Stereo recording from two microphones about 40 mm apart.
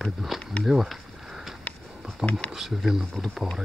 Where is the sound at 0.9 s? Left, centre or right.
Centre.